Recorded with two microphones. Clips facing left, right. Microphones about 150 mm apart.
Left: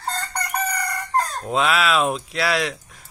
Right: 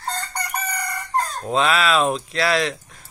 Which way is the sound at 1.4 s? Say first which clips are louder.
Right 3 dB; 5° left (ahead or behind).